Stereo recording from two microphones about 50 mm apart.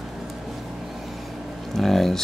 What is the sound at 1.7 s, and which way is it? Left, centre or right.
Speech, centre.